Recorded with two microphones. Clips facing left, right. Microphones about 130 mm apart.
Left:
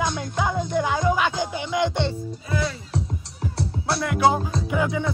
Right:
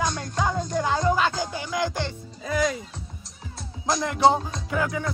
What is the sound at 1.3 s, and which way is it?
Speech, 20° left (ahead or behind).